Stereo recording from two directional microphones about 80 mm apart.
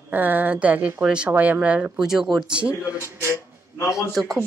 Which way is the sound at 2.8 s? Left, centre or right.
Left.